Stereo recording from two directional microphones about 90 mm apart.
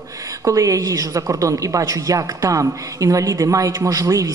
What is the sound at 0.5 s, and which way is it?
A woman's voice, 40° right (ahead or behind).